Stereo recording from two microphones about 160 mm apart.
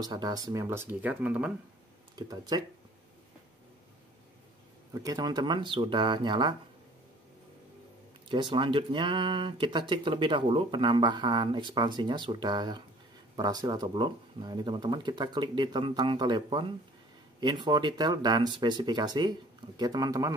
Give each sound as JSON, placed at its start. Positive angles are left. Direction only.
{"t": 0.0, "sound": "speech", "side_deg": -25}
{"t": 2.1, "sound": "speech", "side_deg": -25}
{"t": 4.9, "sound": "speech", "side_deg": -25}
{"t": 8.3, "sound": "speech", "side_deg": -30}